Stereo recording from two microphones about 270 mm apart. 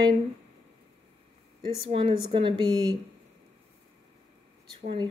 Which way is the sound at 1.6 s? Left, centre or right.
Centre.